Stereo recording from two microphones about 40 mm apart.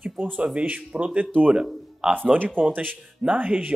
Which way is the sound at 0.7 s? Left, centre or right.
Right.